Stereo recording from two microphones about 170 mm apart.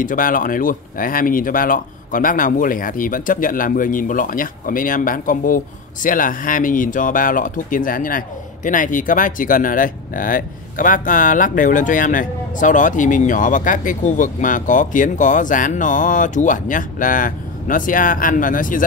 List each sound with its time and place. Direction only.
0.0 s speech: 55° left (ahead or behind)